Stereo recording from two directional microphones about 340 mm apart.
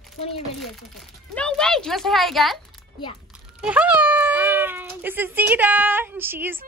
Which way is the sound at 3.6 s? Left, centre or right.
Centre.